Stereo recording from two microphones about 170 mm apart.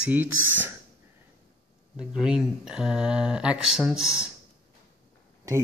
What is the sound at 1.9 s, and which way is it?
Speech, 5° right (ahead or behind).